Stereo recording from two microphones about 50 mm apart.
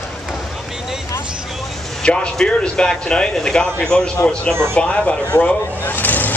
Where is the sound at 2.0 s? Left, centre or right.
Centre.